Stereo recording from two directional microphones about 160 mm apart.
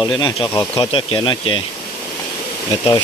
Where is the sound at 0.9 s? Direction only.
30° left (ahead or behind).